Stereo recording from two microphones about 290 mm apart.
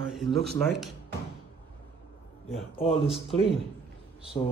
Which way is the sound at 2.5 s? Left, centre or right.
Centre.